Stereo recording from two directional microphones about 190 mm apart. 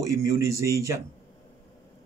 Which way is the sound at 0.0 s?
15° right (ahead or behind).